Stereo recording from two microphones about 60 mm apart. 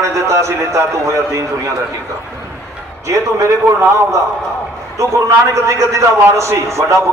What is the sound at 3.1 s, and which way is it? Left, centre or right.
Speech, right.